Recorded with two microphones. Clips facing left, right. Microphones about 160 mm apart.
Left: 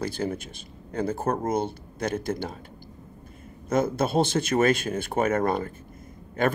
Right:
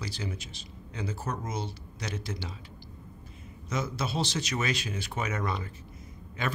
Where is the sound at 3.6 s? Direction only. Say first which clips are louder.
Left 9 dB; 55° left (ahead or behind).